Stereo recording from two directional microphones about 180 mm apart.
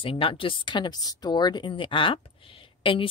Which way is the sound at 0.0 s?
30° left (ahead or behind).